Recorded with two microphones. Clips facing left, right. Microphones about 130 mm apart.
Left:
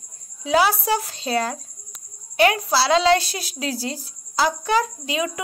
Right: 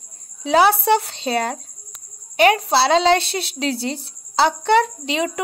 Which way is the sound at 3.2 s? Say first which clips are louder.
Right 5 dB; 65° right (ahead or behind).